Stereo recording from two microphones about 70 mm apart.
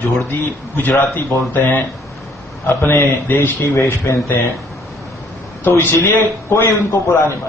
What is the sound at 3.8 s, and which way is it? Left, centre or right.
Speech, left.